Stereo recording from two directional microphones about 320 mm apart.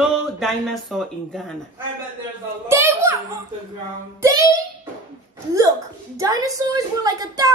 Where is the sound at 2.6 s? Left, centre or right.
Centre.